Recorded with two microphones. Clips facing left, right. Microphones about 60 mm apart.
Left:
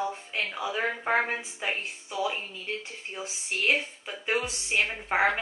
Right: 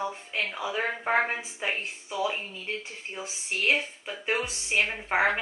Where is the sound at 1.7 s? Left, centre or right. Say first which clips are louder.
Right 1 dB; right.